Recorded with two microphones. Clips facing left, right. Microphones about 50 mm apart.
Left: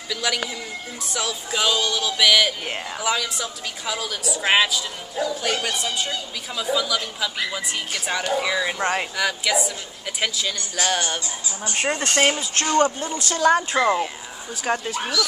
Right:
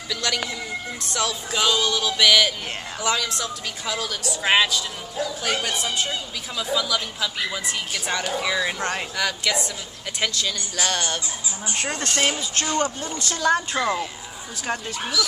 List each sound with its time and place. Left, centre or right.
0.1 s music: centre
10.2 s speech: centre
12.2 s speech: left
13.4 s speech: centre